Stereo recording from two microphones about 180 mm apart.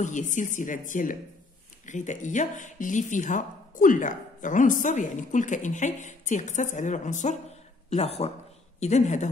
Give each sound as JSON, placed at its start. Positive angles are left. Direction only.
{"t": 0.0, "sound": "a woman's voice", "side_deg": 45}